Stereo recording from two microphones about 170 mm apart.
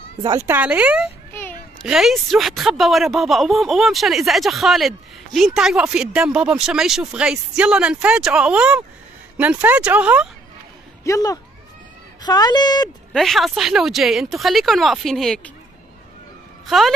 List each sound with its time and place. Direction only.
0.4 s speech: 10° right (ahead or behind)
11.1 s a woman's voice: 20° left (ahead or behind)
13.1 s speech: centre (ahead or behind)
16.6 s speech: centre (ahead or behind)